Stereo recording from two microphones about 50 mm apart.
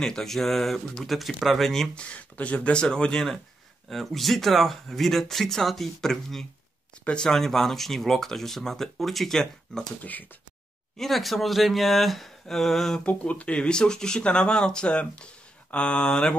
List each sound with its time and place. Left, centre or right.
0.0 s speech: centre
2.0 s speech: left
3.9 s speech: centre
10.0 s speech: left
11.0 s speech: centre
13.0 s speech: left